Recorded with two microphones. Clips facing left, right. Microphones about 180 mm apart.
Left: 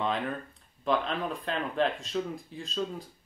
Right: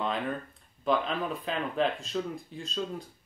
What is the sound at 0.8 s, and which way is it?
Speech, centre (ahead or behind).